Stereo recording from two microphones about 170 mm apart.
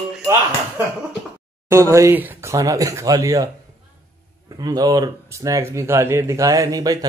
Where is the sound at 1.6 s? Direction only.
15° right (ahead or behind).